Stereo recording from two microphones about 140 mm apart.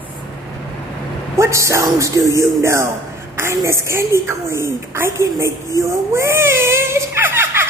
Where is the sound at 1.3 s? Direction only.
20° right (ahead or behind).